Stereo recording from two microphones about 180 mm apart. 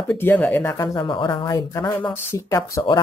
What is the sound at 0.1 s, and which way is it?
Speech, 10° left (ahead or behind).